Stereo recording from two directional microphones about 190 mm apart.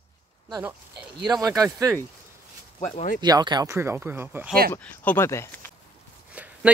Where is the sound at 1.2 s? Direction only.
20° right (ahead or behind).